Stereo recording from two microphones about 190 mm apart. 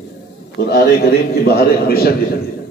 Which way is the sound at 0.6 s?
60° left (ahead or behind).